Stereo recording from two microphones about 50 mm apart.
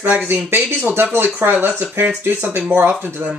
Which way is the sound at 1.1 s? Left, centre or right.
Right.